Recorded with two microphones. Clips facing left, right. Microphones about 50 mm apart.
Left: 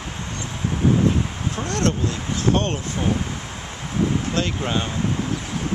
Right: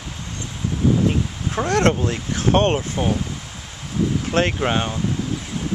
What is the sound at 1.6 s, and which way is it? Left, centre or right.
Speech, right.